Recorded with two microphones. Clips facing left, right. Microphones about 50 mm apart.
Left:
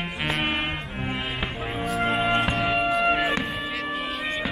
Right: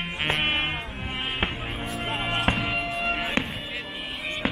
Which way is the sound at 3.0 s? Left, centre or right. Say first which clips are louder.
Left 6 dB; centre.